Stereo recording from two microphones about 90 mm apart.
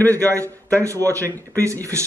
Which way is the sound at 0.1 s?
35° right (ahead or behind).